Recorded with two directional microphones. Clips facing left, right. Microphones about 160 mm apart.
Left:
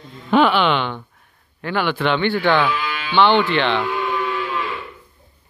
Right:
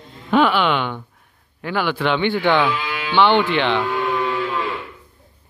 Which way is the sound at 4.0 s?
35° right (ahead or behind).